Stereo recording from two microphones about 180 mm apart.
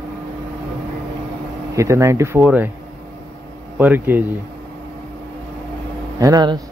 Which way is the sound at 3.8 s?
10° right (ahead or behind).